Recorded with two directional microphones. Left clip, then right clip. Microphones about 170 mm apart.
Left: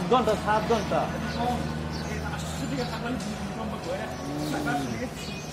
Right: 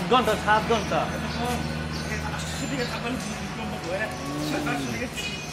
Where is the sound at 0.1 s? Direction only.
Centre (ahead or behind).